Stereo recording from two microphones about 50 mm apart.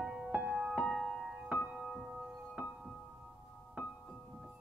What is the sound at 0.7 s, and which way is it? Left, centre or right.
Music, centre.